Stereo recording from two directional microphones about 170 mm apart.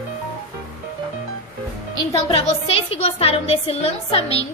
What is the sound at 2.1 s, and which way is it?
Speech, 35° left (ahead or behind).